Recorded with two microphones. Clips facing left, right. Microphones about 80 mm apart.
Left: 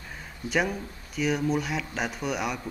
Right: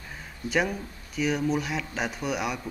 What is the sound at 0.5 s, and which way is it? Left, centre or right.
Speech, centre.